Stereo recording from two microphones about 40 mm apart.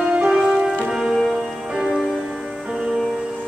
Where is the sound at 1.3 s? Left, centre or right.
Right.